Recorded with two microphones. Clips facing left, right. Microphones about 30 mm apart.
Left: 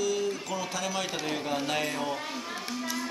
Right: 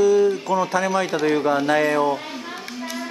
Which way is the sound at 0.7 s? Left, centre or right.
Right.